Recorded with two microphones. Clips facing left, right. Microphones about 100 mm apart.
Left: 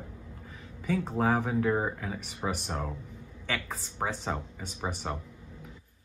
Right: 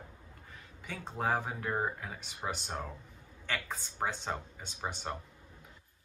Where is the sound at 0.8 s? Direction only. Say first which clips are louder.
Left 8 dB; centre (ahead or behind).